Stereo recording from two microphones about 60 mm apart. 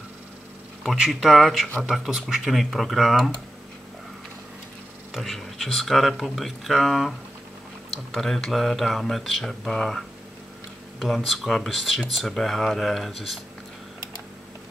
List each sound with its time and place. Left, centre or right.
0.9 s speech: centre
5.1 s speech: centre